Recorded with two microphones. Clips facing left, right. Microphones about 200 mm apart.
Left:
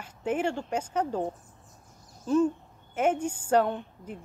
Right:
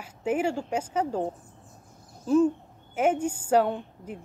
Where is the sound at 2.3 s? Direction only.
5° right (ahead or behind).